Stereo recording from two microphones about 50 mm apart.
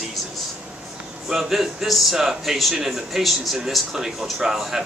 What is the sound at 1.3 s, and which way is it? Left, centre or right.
Speech, centre.